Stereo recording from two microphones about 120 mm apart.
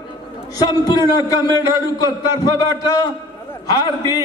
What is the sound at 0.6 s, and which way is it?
A man's voice, 35° left (ahead or behind).